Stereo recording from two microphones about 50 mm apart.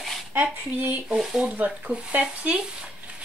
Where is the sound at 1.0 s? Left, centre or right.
Centre.